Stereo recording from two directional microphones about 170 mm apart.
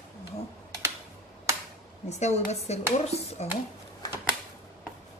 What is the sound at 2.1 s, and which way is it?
A woman's voice, 40° left (ahead or behind).